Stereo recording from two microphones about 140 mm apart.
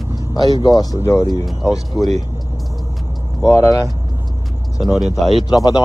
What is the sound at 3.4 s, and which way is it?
Speech, 25° left (ahead or behind).